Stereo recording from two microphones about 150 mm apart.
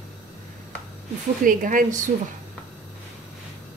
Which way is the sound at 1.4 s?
65° right (ahead or behind).